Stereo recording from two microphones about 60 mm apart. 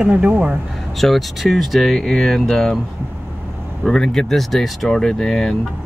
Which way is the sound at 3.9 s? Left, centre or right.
Centre.